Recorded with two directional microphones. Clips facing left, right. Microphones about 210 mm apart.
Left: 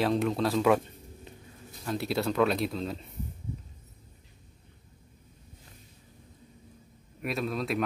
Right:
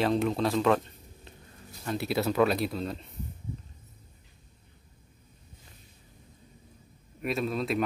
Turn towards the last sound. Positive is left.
turn(degrees=0)  # may be behind; listen again after turning